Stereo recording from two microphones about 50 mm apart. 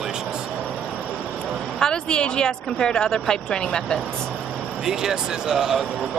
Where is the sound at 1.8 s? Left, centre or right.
Centre.